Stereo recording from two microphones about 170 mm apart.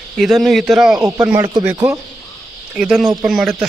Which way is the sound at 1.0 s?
15° right (ahead or behind).